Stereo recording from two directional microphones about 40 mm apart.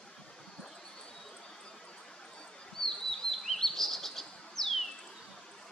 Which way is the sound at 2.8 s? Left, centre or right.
Centre.